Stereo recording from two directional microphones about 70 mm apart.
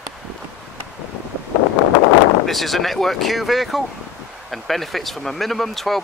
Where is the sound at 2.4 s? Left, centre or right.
Centre.